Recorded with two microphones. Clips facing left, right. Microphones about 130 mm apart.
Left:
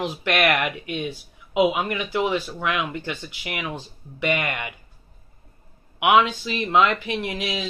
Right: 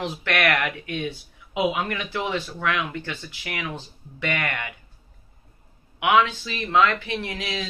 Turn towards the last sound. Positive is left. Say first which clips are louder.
# left 2 dB
turn(degrees=15)  # may be behind; listen again after turning